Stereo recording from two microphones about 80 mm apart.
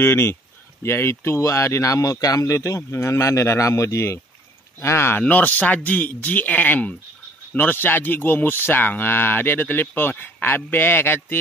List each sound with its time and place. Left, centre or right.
0.0 s speech: left
5.2 s speech: centre